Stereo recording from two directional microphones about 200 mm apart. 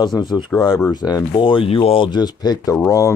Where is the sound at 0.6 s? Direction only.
20° left (ahead or behind).